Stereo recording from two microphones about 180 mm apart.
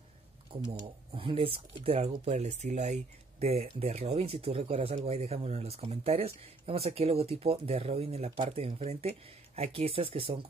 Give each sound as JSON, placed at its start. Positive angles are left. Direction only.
{"t": 1.1, "sound": "speech", "side_deg": -30}